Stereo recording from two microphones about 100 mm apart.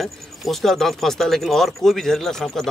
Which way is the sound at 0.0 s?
Centre (ahead or behind).